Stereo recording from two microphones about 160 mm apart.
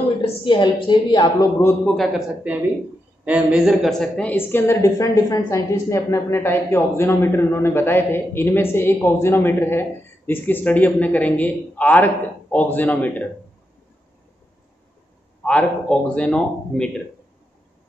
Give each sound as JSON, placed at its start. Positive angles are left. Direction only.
{"t": 0.2, "sound": "a woman's voice", "side_deg": 30}
{"t": 1.9, "sound": "a man's voice", "side_deg": 0}
{"t": 3.3, "sound": "a woman's voice", "side_deg": -5}
{"t": 15.4, "sound": "a man's voice", "side_deg": 5}